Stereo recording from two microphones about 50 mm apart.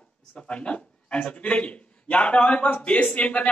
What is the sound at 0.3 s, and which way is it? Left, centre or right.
A man's voice, left.